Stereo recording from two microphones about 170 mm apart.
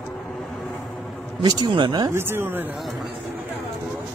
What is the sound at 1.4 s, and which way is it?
Speech, 25° right (ahead or behind).